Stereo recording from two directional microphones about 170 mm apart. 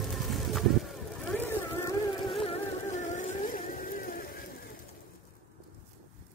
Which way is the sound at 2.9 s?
45° left (ahead or behind).